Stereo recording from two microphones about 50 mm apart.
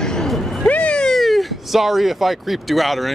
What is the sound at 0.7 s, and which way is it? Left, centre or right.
Cat, left.